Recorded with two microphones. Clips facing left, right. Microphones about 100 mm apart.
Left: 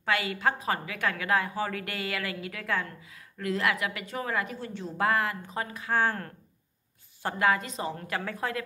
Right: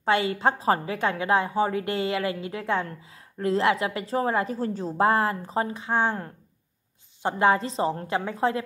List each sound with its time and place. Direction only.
0.0 s a woman's voice: 30° right (ahead or behind)